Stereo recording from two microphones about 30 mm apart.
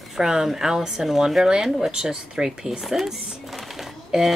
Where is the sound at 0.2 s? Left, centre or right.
Centre.